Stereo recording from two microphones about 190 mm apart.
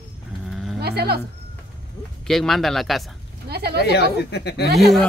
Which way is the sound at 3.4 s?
55° right (ahead or behind).